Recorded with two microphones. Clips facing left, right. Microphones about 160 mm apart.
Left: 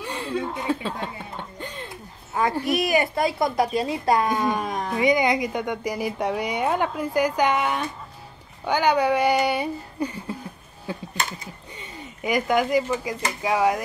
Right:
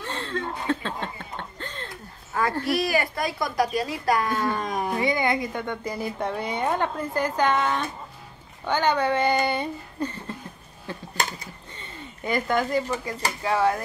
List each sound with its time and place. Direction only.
0.0 s chuckle: 10° left (ahead or behind)
2.3 s a woman's voice: 20° left (ahead or behind)
4.6 s speech: 5° right (ahead or behind)
4.9 s speech: 20° left (ahead or behind)
11.7 s a sound: 10° left (ahead or behind)
13.4 s speech: 15° left (ahead or behind)